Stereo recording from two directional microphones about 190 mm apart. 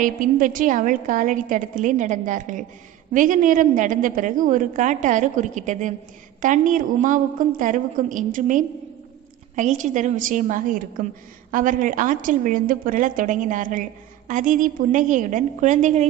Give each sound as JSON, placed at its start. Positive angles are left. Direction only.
{"t": 0.0, "sound": "a woman's voice", "side_deg": -45}